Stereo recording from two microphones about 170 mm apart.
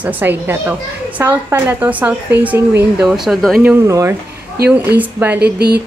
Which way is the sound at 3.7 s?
20° right (ahead or behind).